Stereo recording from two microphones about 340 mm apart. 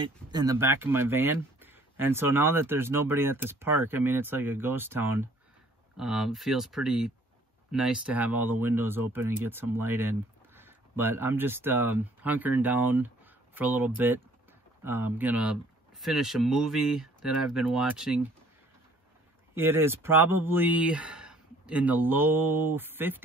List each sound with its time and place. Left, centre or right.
0.0 s speech: centre
19.5 s speech: centre